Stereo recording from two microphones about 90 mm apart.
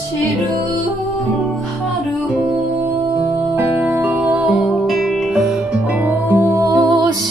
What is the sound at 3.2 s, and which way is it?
Music, 25° right (ahead or behind).